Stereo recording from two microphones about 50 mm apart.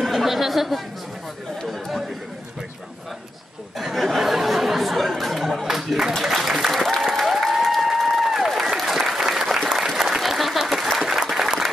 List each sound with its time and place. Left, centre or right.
0.0 s chatter: centre
3.7 s a sound: centre
6.2 s applause: centre